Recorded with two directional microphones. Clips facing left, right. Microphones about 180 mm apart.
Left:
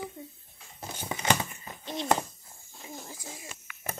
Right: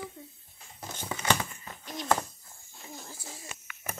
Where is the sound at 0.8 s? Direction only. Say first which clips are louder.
Left 1 dB; 15° left (ahead or behind).